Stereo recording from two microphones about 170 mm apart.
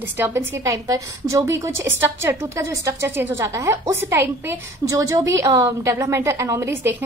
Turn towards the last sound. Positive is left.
turn(degrees=-15)  # may be behind; listen again after turning